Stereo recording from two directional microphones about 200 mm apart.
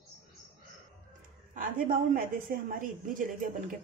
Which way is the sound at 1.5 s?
45° right (ahead or behind).